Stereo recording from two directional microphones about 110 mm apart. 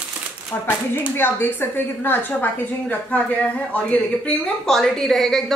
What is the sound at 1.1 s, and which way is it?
A woman's voice, 20° left (ahead or behind).